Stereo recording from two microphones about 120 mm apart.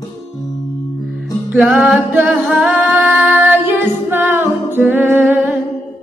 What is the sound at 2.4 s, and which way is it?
Singing, centre (ahead or behind).